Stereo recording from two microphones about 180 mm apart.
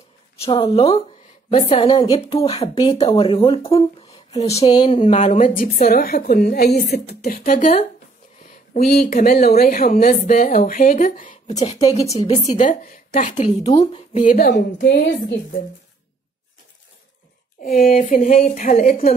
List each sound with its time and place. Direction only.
0.4 s a woman's voice: 30° left (ahead or behind)
4.6 s speech: 25° left (ahead or behind)
4.9 s a woman's voice: 40° left (ahead or behind); by 7.5 s 55° left (ahead or behind)
8.7 s a woman's voice: 55° left (ahead or behind)
13.5 s a woman's voice: 35° left (ahead or behind)
14.1 s a woman's voice: 45° left (ahead or behind)
14.8 s a woman's voice: 65° left (ahead or behind)
17.6 s a woman's voice: 55° left (ahead or behind)